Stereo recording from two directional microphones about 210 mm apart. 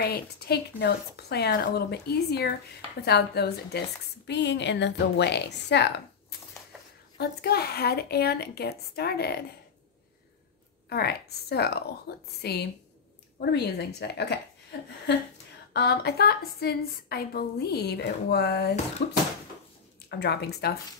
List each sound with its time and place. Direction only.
0.0 s a woman's voice: 50° left (ahead or behind)
7.2 s a woman's voice: 50° left (ahead or behind)
10.9 s a woman's voice: 50° left (ahead or behind)
15.7 s a woman's voice: 50° left (ahead or behind)